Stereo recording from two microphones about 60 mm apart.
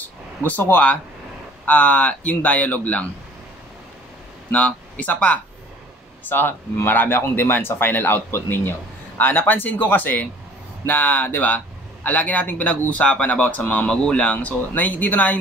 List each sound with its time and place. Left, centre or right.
0.0 s a man's voice: left
4.5 s a man's voice: left